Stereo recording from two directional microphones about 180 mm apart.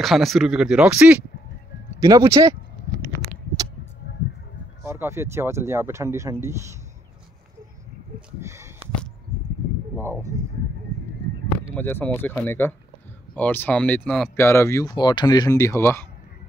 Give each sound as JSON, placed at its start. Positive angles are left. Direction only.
{"t": 0.0, "sound": "speech", "side_deg": 0}
{"t": 2.9, "sound": "a sound", "side_deg": 70}
{"t": 4.8, "sound": "speech", "side_deg": -15}
{"t": 8.4, "sound": "speech", "side_deg": -15}
{"t": 10.3, "sound": "speech", "side_deg": -15}
{"t": 11.7, "sound": "speech", "side_deg": 10}